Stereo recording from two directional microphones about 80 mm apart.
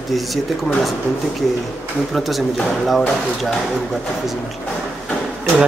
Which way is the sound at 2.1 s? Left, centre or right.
Centre.